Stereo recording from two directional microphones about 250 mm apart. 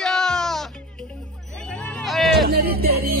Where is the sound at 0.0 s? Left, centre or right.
Centre.